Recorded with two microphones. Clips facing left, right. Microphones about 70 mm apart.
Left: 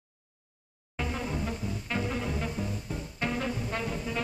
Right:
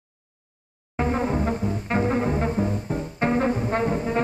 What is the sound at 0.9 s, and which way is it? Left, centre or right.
Music, right.